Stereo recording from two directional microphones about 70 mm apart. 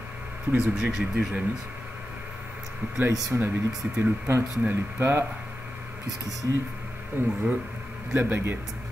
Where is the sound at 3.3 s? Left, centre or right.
Right.